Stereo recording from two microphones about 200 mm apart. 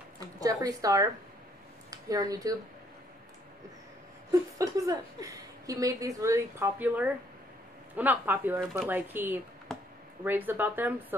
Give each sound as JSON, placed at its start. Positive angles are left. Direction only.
{"t": 0.4, "sound": "speech", "side_deg": -20}
{"t": 4.3, "sound": "a woman's voice", "side_deg": -15}
{"t": 9.7, "sound": "a sound", "side_deg": 0}
{"t": 10.2, "sound": "speech", "side_deg": -10}